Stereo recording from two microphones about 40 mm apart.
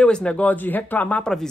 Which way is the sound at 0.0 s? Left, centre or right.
Left.